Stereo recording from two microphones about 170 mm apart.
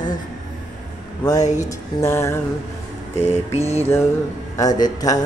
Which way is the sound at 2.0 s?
15° left (ahead or behind).